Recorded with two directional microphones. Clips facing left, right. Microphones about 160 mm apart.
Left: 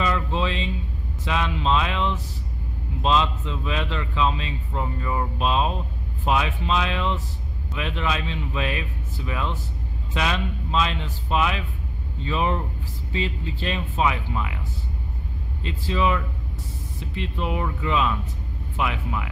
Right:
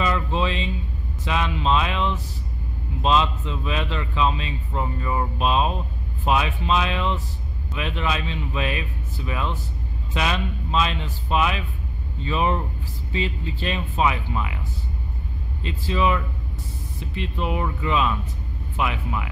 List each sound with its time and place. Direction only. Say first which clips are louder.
0.0 s a man's voice: right 1 dB; 5° right (ahead or behind)
15.6 s a man's voice: right 1 dB; 10° right (ahead or behind)